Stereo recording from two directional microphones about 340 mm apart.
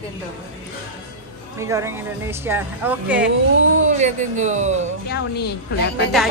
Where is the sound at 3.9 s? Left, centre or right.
Right.